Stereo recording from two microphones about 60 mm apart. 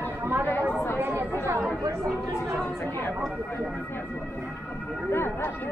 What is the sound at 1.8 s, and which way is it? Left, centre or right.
Speech, right.